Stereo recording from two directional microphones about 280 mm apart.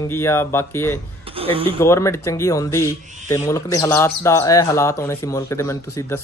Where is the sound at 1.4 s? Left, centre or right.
Centre.